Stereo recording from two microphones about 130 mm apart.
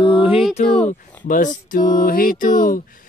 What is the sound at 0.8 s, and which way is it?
Speech, 80° left.